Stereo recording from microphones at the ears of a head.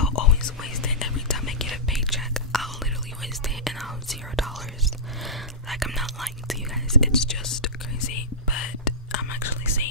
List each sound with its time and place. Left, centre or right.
0.0 s whispering: left
2.1 s whispering: centre
7.0 s whispering: left